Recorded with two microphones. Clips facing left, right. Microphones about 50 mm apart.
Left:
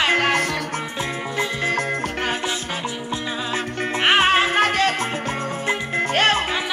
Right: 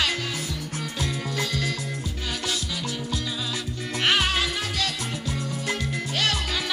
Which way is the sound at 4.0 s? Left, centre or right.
Left.